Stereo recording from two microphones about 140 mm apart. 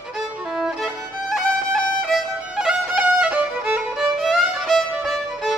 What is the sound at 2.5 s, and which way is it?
Violin, 5° right (ahead or behind).